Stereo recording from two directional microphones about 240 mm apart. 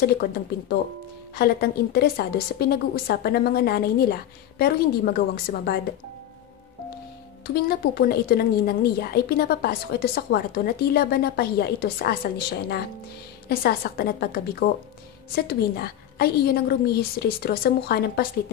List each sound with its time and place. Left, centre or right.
0.0 s a woman's voice: left
7.5 s a woman's voice: left
13.5 s a woman's voice: left